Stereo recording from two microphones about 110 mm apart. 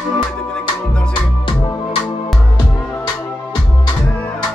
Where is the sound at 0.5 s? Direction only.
10° left (ahead or behind).